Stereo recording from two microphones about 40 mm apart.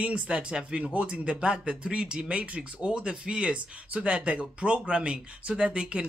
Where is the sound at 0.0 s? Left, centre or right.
Right.